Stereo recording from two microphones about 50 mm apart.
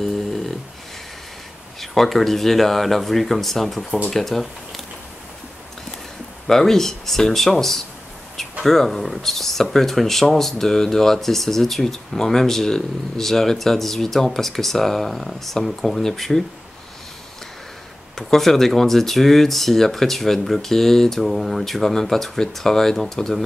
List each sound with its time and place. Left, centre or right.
0.0 s snoring: centre
1.8 s speech: centre
6.4 s speech: centre
18.1 s speech: centre